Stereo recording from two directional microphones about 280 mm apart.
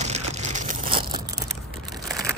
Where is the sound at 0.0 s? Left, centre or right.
Right.